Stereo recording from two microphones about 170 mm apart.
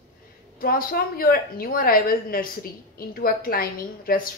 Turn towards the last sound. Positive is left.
turn(degrees=60)  # may be behind; listen again after turning